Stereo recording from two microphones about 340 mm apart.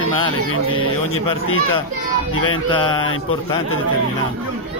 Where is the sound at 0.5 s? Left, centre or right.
Left.